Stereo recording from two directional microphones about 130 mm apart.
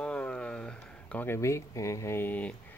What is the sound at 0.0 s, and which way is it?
Speech, 10° left (ahead or behind).